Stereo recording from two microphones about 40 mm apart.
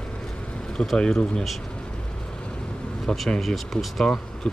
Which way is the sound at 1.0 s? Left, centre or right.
Centre.